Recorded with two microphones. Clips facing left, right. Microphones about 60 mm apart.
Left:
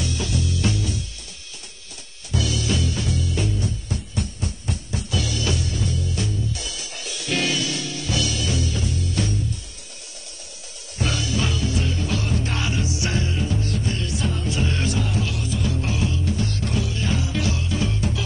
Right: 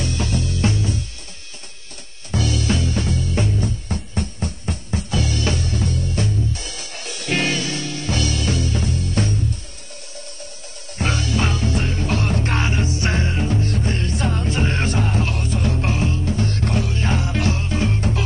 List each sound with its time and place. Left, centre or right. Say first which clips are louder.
0.0 s music: right 2 dB; right
2.3 s music: right 3 dB; right
11.0 s music: right 3 dB; right